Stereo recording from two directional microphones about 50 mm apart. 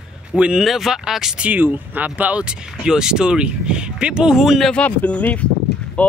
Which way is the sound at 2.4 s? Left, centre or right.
Centre.